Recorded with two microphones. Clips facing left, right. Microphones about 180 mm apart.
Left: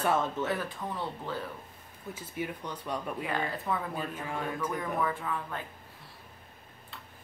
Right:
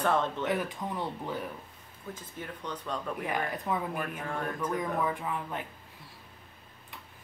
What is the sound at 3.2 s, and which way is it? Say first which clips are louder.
Speech: right 1 dB; 15° right (ahead or behind).